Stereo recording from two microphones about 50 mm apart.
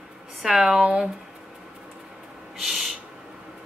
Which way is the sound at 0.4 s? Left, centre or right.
Centre.